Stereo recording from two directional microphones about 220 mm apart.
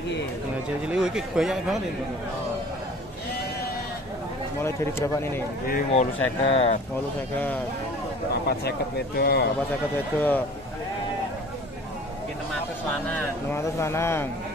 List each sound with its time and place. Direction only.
0.8 s speech: 5° right (ahead or behind)
4.6 s speech: 10° left (ahead or behind)
5.7 s speech: 40° left (ahead or behind)
6.4 s speech: 25° left (ahead or behind)
8.5 s speech: 45° left (ahead or behind)
10.1 s speech: 10° left (ahead or behind)
13.1 s speech: 10° left (ahead or behind)